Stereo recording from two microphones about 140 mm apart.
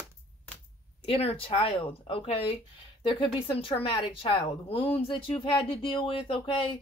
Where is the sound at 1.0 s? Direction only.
45° left (ahead or behind).